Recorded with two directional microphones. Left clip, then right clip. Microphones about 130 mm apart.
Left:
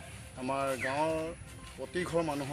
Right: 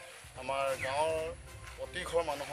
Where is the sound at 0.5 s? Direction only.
30° right (ahead or behind).